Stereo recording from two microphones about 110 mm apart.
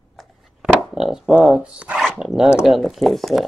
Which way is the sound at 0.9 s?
5° right (ahead or behind).